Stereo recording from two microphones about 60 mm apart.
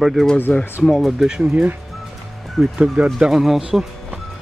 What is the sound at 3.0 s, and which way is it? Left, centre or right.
Speech, right.